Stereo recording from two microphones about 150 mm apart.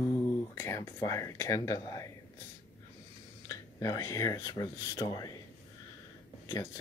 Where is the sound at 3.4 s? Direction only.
25° left (ahead or behind).